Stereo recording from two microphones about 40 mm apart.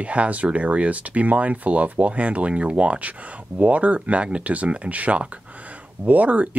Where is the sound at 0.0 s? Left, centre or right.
Right.